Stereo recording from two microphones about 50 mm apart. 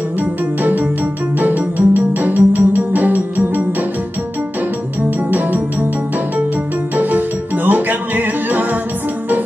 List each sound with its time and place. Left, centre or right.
0.2 s music: right
5.3 s music: right
7.0 s music: right